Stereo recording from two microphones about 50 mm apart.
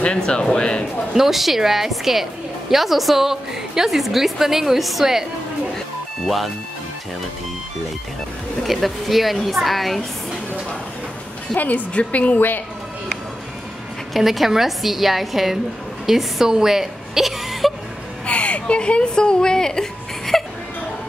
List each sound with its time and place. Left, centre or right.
0.3 s speech: centre
1.1 s a woman's voice: centre
6.2 s a woman's voice: centre
8.6 s a woman's voice: centre
11.5 s a woman's voice: left
12.4 s a woman's voice: left
14.1 s a woman's voice: centre
18.2 s a sound: left; by 20.4 s centre